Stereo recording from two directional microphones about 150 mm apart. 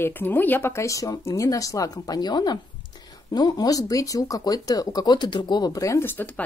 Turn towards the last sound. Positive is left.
turn(degrees=10)  # may be behind; listen again after turning